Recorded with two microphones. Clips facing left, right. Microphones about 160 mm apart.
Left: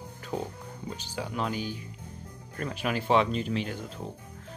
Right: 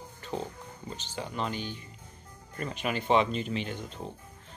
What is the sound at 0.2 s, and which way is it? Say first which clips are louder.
Speech: left 2 dB; 5° left (ahead or behind).